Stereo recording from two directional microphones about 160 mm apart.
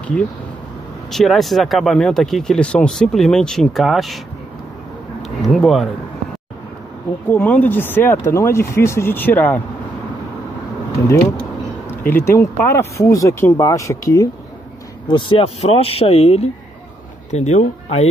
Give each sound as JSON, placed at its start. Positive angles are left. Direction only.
{"t": 1.1, "sound": "speech", "side_deg": 0}
{"t": 5.4, "sound": "speech", "side_deg": 0}
{"t": 7.2, "sound": "speech", "side_deg": 10}
{"t": 12.0, "sound": "speech", "side_deg": 15}
{"t": 15.0, "sound": "speech", "side_deg": 30}